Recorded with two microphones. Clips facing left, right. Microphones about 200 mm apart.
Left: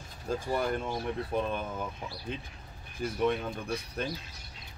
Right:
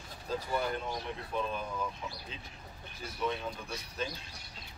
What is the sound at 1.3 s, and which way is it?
Speech, 60° left (ahead or behind).